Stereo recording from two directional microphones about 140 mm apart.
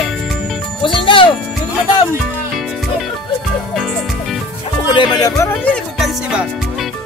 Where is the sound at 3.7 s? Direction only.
Centre (ahead or behind).